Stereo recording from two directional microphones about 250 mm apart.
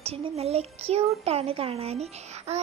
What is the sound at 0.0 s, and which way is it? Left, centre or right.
Speech, right.